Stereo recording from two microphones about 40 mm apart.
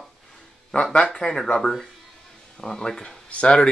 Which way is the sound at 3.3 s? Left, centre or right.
Left.